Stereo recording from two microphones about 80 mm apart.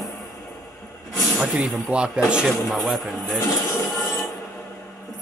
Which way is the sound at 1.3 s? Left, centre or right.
Centre.